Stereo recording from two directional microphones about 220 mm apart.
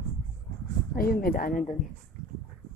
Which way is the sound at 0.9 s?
40° left (ahead or behind).